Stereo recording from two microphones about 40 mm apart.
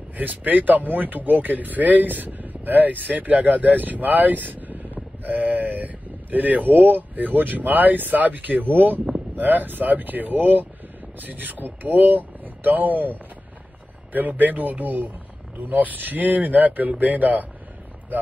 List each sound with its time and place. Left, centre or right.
0.1 s speech: right
14.1 s speech: right